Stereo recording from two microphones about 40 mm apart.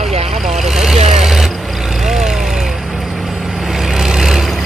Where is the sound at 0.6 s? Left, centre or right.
Centre.